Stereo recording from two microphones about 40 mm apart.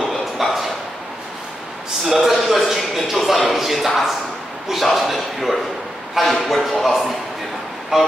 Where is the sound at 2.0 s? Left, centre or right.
Centre.